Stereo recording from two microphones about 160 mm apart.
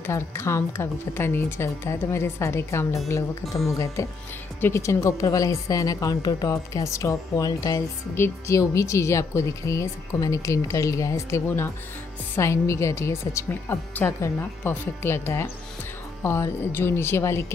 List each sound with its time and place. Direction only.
0.0 s a woman's voice: 15° left (ahead or behind)